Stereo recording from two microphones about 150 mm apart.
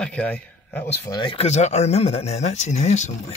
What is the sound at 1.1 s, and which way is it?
Speech, 30° left (ahead or behind).